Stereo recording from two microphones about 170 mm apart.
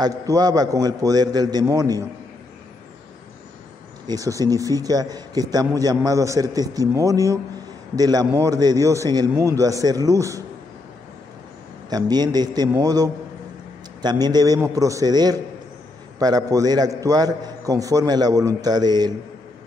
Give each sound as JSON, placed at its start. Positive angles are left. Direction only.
{"t": 0.0, "sound": "a man's voice", "side_deg": -20}
{"t": 4.1, "sound": "a man's voice", "side_deg": -20}
{"t": 11.9, "sound": "a man's voice", "side_deg": -25}